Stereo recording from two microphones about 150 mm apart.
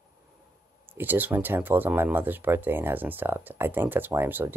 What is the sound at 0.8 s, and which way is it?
Speech, 15° right (ahead or behind).